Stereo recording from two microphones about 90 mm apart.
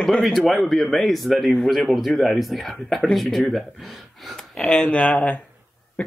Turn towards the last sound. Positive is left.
turn(degrees=15)  # may be behind; listen again after turning